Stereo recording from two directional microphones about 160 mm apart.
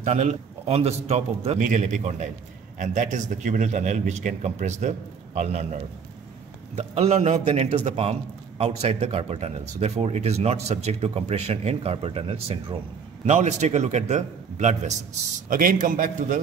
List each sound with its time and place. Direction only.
0.0 s speech: 45° right (ahead or behind)
6.7 s a man's voice: 40° right (ahead or behind)
15.5 s a man's voice: 60° right (ahead or behind)